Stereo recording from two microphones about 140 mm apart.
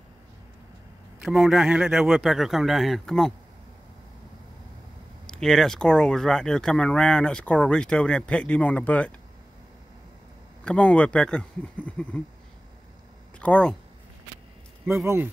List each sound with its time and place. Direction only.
1.2 s speech: 5° right (ahead or behind)
5.2 s speech: 5° left (ahead or behind)
10.6 s speech: 10° left (ahead or behind)
13.4 s speech: 10° left (ahead or behind)
14.9 s speech: 20° right (ahead or behind)